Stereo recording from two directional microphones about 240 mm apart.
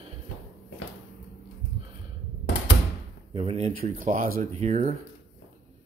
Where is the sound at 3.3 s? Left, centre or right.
Right.